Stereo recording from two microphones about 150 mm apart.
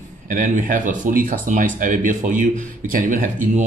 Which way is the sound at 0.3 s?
60° right (ahead or behind).